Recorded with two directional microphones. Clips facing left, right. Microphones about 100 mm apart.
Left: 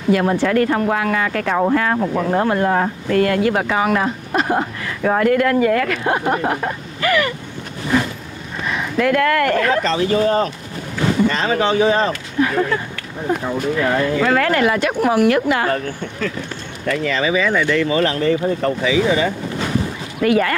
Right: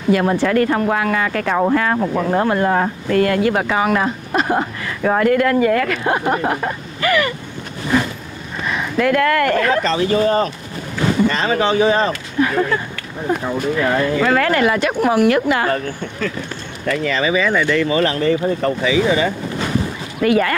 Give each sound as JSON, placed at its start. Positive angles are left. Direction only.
{"t": 0.1, "sound": "speech", "side_deg": -30}
{"t": 8.5, "sound": "speech", "side_deg": -30}